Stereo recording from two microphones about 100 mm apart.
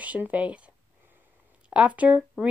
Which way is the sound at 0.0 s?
15° right (ahead or behind).